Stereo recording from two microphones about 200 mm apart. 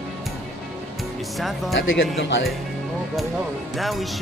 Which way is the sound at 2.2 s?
65° left (ahead or behind).